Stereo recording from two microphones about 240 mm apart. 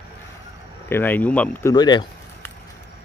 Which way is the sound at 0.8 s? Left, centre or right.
Centre.